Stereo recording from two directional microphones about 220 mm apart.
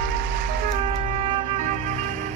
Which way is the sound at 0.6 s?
30° right (ahead or behind).